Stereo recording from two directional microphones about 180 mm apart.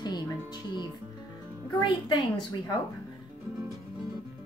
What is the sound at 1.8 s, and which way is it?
Speech, 25° left (ahead or behind).